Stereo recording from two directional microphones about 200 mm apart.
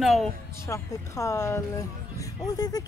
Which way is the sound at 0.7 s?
15° left (ahead or behind).